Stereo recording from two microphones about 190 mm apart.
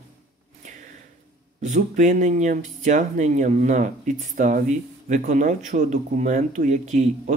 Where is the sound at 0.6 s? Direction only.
40° right (ahead or behind).